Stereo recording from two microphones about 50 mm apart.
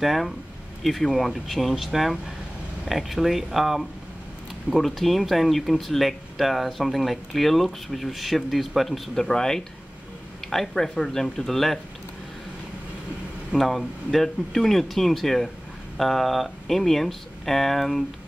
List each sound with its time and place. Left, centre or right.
0.0 s speech: centre
13.6 s speech: centre